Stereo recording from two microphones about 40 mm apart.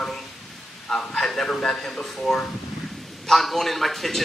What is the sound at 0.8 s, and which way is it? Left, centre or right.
A man's voice, centre.